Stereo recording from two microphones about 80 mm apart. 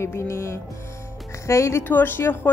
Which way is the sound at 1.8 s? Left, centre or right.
Left.